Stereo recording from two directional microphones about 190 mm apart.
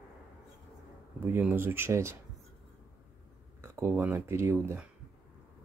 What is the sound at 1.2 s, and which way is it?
Speech, 10° right (ahead or behind).